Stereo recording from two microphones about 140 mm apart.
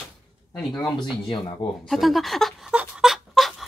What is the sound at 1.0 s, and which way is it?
Speech, 35° left (ahead or behind).